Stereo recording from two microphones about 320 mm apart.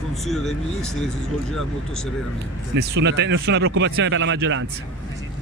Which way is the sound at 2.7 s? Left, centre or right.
Right.